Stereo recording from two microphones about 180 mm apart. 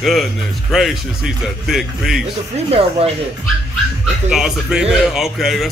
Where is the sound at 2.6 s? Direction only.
35° right (ahead or behind).